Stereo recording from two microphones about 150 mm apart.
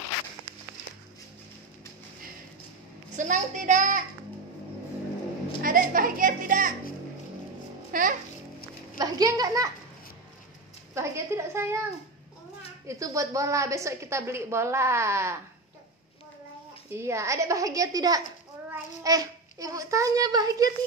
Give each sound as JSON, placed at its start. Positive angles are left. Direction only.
{"t": 3.2, "sound": "speech", "side_deg": -55}
{"t": 5.6, "sound": "speech", "side_deg": -70}
{"t": 7.9, "sound": "a child's voice", "side_deg": -60}
{"t": 8.9, "sound": "a child's voice", "side_deg": -25}
{"t": 11.0, "sound": "a woman's voice", "side_deg": -20}
{"t": 16.9, "sound": "a woman's voice", "side_deg": -20}